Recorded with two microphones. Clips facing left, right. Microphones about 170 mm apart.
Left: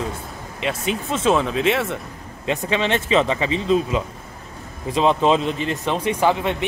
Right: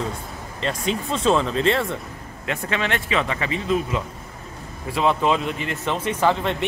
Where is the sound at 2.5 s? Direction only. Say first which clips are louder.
Left 4 dB; 20° left (ahead or behind).